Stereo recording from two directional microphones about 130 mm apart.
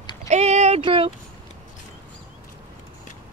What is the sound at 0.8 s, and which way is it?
Speech, 40° right (ahead or behind).